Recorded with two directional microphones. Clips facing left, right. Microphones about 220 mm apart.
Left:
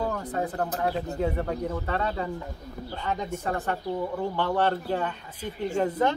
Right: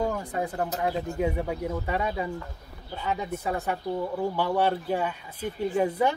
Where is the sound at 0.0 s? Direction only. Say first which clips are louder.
Even; 15° right (ahead or behind).